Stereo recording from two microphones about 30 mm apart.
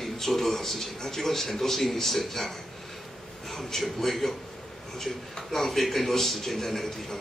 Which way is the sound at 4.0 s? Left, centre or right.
Centre.